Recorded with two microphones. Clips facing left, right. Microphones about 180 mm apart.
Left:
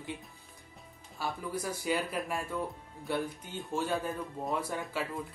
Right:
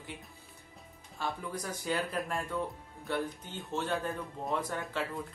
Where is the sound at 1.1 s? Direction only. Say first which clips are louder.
Left 1 dB; 5° left (ahead or behind).